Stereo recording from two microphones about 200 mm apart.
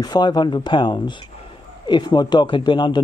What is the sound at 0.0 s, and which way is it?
A man's voice, 20° left (ahead or behind).